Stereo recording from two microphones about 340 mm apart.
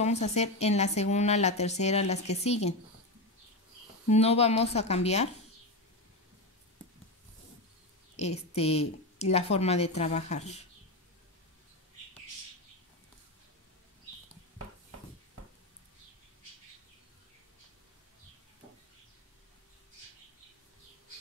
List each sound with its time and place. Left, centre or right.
0.0 s speech: centre
4.1 s speech: centre
8.2 s speech: centre